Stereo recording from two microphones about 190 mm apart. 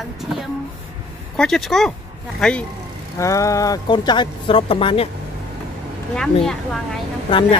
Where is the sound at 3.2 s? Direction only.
15° left (ahead or behind).